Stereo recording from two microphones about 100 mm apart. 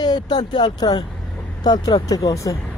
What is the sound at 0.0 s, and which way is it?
Speech, 45° left (ahead or behind).